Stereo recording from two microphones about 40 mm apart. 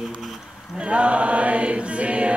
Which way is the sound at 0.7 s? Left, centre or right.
Right.